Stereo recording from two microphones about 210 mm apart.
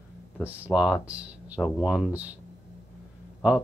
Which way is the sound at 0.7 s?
5° right (ahead or behind).